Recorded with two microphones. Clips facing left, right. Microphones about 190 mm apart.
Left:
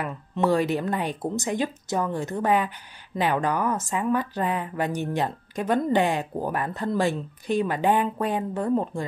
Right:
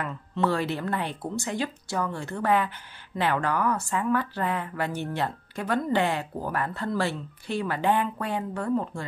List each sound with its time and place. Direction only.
0.0 s speech: 15° left (ahead or behind)